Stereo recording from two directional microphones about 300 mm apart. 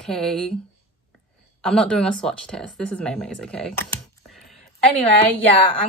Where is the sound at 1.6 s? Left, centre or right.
Centre.